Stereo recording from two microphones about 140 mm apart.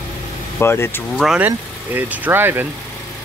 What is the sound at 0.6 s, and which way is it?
Speech, 15° left (ahead or behind).